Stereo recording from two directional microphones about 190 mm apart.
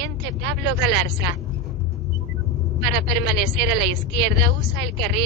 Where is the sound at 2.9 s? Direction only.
60° right (ahead or behind).